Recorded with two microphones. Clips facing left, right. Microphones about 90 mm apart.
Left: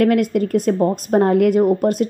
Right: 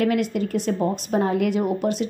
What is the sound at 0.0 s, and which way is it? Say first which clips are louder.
A woman's voice: left 6 dB; 50° left (ahead or behind).